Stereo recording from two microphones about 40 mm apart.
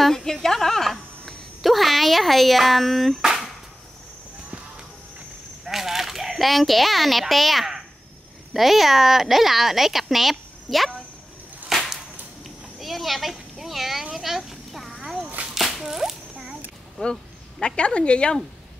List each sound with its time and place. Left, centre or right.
0.0 s a woman's voice: centre
5.7 s speech: centre
11.7 s whip: centre
12.4 s a sound: centre
15.0 s whip: centre
17.0 s speech: left